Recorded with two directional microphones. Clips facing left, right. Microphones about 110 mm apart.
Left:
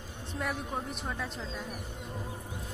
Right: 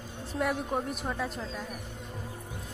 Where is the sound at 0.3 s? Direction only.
5° right (ahead or behind).